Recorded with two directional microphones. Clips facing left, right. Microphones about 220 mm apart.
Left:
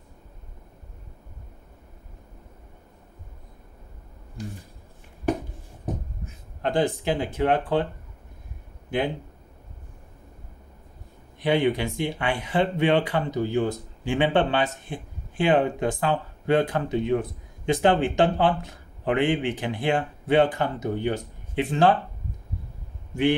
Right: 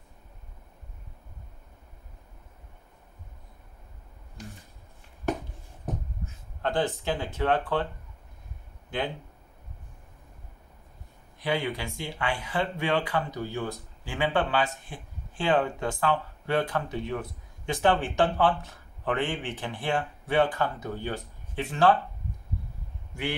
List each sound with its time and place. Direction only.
6.6 s speech: 15° left (ahead or behind)
11.4 s speech: 20° left (ahead or behind)